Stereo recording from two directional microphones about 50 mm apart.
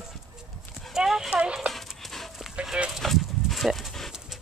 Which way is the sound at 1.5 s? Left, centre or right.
Centre.